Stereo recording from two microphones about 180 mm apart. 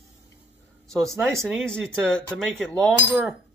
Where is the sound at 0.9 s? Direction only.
Centre (ahead or behind).